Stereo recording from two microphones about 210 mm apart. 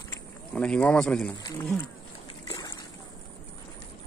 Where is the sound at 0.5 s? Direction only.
5° left (ahead or behind).